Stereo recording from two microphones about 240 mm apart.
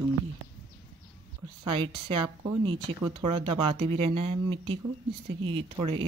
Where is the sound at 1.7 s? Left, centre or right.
Right.